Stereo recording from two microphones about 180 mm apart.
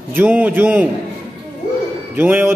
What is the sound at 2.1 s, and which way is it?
Speech, 10° right (ahead or behind).